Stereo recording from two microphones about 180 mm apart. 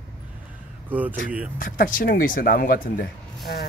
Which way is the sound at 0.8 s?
10° right (ahead or behind).